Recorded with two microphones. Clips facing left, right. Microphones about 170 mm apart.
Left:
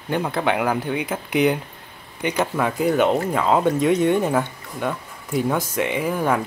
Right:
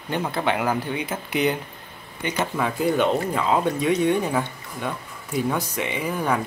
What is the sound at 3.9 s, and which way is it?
Speech, 55° left (ahead or behind).